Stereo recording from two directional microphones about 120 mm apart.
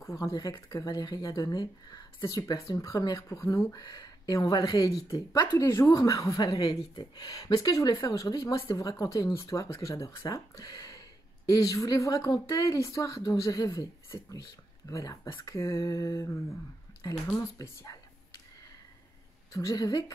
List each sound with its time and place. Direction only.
0.0 s speech: 25° left (ahead or behind)
0.3 s speech: 35° left (ahead or behind)
19.5 s speech: 35° left (ahead or behind)